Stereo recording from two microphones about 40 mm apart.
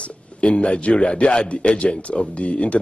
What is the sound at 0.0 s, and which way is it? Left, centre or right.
A man's voice, left.